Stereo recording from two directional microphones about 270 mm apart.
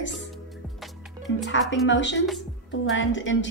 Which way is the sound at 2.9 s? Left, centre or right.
Left.